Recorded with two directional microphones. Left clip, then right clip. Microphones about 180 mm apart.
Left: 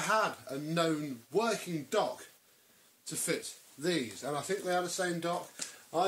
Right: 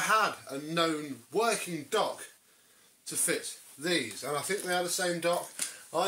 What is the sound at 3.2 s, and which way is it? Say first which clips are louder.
Speech: right 3 dB; 55° left (ahead or behind).